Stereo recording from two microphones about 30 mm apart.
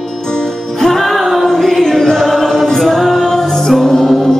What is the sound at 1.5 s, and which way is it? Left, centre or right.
Choir, centre.